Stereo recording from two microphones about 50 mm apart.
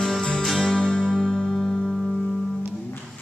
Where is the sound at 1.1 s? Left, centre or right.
Centre.